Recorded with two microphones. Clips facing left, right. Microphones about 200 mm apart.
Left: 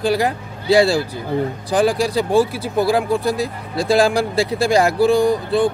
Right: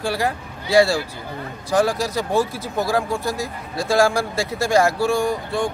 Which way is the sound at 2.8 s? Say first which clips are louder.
Left 5 dB; 15° left (ahead or behind).